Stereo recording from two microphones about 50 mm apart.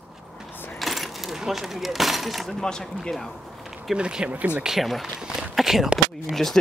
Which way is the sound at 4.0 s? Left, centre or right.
Centre.